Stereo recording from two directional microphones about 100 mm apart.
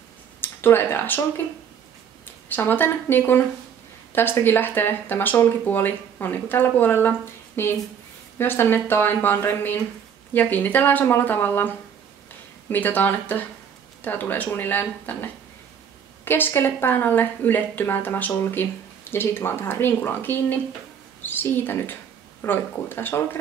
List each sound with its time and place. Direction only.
0.4 s speech: 20° left (ahead or behind)
16.3 s speech: 20° left (ahead or behind)